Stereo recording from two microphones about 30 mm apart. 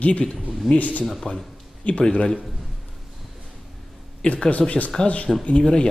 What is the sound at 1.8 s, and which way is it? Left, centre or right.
Speech, left.